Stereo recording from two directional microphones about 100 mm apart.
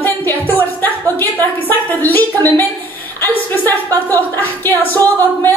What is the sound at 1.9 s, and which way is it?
Speech, 20° left (ahead or behind).